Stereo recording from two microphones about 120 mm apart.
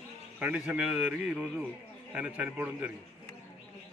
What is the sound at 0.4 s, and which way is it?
Speech, 10° right (ahead or behind).